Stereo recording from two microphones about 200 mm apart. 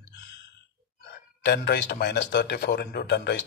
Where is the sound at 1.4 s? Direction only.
55° left (ahead or behind).